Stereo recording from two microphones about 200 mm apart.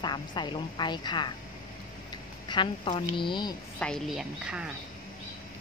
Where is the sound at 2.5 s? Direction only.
25° left (ahead or behind).